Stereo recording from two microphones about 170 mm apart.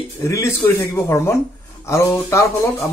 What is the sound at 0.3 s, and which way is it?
Speech, 15° left (ahead or behind).